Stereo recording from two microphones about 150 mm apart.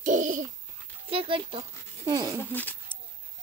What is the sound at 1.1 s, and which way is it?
Speech, 40° right (ahead or behind).